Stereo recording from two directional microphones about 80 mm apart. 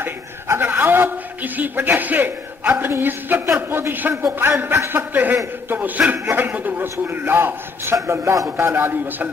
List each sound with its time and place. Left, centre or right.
0.0 s a man's voice: right